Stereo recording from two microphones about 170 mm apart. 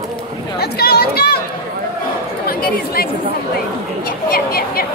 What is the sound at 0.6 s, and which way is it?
Chatter, 70° left (ahead or behind).